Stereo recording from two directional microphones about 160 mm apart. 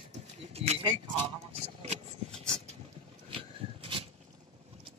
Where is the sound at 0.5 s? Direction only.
40° right (ahead or behind).